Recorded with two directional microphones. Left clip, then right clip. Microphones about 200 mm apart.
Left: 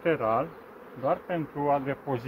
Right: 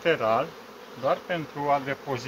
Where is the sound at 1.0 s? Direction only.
10° left (ahead or behind).